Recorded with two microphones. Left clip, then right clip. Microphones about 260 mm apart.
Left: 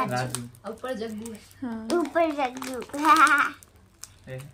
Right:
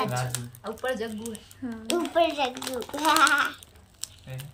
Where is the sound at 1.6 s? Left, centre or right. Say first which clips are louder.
Left 2 dB; left.